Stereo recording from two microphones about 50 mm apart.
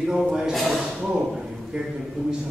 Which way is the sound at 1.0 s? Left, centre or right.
Right.